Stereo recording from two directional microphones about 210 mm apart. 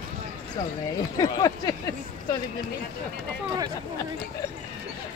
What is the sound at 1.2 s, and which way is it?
Speech, 20° left (ahead or behind).